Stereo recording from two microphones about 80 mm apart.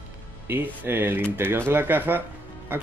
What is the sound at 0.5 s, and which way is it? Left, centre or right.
Speech, right.